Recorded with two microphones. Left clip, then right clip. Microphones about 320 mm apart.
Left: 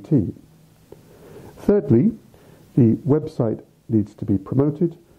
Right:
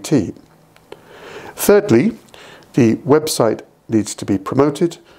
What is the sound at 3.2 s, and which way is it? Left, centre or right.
Speech, centre.